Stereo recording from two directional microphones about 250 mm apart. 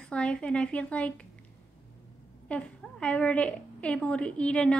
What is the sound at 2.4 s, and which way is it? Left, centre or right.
A woman's voice, centre.